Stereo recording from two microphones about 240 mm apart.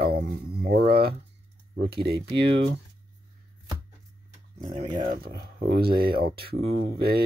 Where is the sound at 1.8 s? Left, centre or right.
Right.